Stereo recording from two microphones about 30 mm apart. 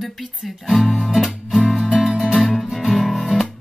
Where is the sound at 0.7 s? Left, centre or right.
Centre.